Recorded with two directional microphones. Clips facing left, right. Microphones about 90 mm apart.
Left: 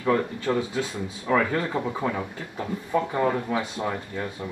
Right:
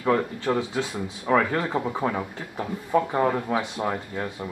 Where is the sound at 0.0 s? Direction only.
30° right (ahead or behind).